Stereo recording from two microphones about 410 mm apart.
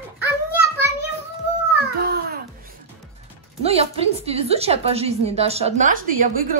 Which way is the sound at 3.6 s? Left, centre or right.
Centre.